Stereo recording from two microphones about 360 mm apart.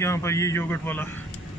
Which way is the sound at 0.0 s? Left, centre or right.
Centre.